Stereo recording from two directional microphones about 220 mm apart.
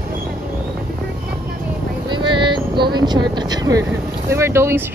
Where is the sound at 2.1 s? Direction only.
20° right (ahead or behind).